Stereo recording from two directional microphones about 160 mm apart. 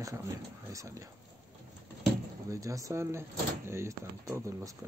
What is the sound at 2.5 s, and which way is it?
Speech, 20° right (ahead or behind).